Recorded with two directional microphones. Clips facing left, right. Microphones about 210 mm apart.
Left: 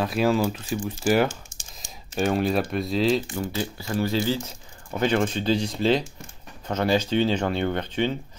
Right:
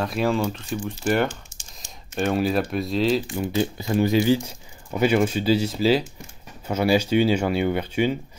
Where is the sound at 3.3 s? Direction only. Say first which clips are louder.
Right 5 dB; 15° right (ahead or behind).